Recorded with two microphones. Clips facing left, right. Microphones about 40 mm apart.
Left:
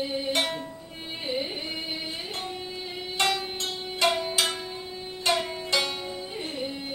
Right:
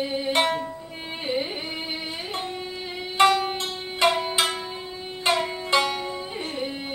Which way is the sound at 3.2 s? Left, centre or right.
Right.